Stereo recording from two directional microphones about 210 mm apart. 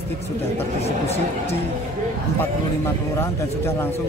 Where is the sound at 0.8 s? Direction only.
30° left (ahead or behind).